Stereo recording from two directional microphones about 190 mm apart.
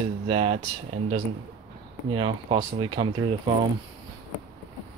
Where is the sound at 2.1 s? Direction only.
25° right (ahead or behind).